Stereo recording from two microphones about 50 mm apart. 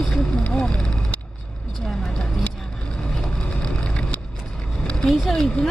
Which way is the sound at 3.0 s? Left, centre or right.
Centre.